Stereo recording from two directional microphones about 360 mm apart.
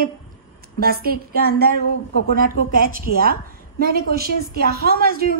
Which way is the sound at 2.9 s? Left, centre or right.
Right.